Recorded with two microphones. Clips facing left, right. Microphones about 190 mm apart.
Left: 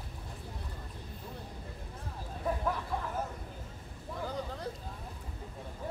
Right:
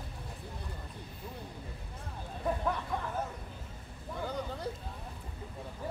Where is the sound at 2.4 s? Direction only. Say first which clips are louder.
Right 1 dB; centre (ahead or behind).